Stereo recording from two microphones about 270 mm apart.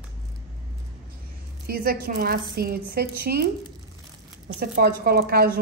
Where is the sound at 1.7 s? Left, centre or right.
Right.